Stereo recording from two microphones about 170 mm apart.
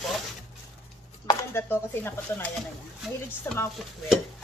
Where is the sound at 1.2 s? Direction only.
15° left (ahead or behind).